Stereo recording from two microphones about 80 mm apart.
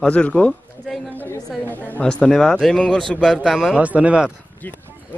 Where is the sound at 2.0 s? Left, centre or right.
Centre.